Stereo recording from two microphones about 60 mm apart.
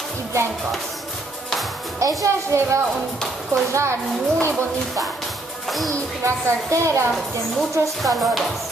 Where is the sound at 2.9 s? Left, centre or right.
Centre.